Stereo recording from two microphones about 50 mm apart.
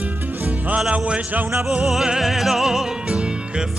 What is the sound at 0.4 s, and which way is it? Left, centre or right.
Music, right.